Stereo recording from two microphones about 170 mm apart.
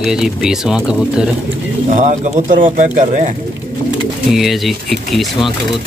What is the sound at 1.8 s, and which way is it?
Speech, 45° right (ahead or behind).